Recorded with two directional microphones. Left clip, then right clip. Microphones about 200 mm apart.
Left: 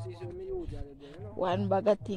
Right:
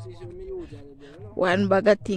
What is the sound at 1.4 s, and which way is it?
Speech, 30° right (ahead or behind).